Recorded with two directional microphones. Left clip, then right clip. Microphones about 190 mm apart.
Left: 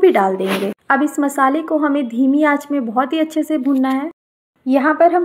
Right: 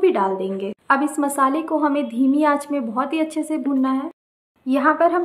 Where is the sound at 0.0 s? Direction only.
30° left (ahead or behind).